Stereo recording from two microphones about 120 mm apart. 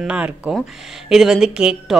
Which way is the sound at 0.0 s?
10° right (ahead or behind).